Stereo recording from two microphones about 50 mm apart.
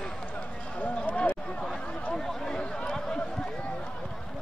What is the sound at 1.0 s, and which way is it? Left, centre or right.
Run, left.